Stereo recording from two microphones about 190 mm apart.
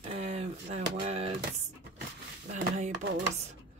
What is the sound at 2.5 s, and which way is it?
Speech, 40° right (ahead or behind).